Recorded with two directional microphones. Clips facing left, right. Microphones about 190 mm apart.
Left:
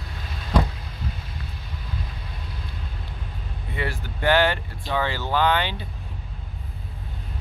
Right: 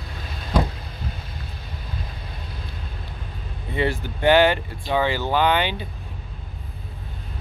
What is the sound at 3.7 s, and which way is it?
Speech, 25° right (ahead or behind).